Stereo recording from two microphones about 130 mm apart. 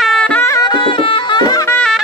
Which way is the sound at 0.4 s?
25° left (ahead or behind).